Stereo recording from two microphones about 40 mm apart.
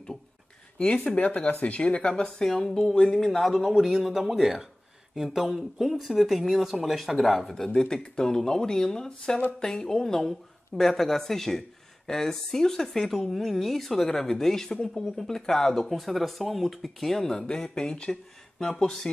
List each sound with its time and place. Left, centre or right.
0.7 s speech: left; by 3.3 s centre
3.3 s speech: centre; by 18.1 s left